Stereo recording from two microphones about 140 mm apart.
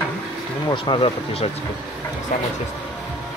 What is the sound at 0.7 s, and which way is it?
Speech, 35° left (ahead or behind).